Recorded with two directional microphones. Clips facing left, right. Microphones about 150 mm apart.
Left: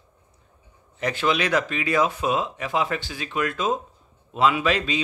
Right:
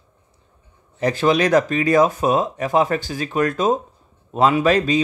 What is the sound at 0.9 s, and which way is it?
A man's voice, 35° right (ahead or behind).